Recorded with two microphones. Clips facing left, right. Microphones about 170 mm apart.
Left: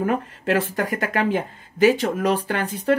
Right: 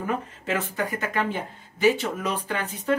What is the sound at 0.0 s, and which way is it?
Speech, 75° left (ahead or behind).